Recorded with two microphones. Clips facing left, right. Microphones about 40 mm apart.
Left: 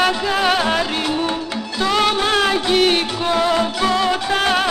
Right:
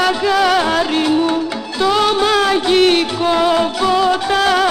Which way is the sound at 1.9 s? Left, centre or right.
Left.